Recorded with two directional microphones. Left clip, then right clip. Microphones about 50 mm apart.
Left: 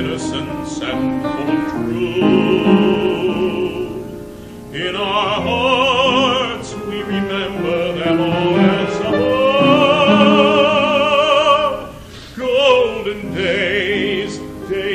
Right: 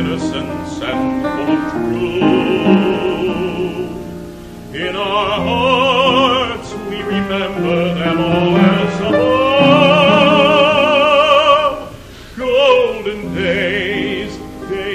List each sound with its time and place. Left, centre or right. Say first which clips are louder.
0.0 s music: right 2 dB; centre
4.7 s opera: right 1 dB; left
12.4 s music: right 2 dB; centre